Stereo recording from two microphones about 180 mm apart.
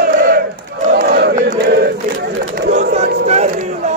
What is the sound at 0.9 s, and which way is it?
Battle cry, 60° right (ahead or behind).